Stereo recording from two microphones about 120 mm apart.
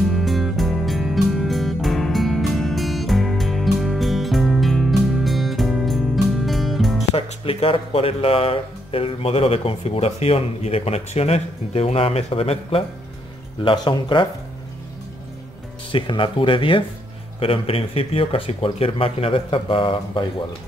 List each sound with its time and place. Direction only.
0.0 s music: centre (ahead or behind)
7.2 s speech: 50° left (ahead or behind)
13.7 s speech: 40° left (ahead or behind)
15.9 s speech: 45° left (ahead or behind)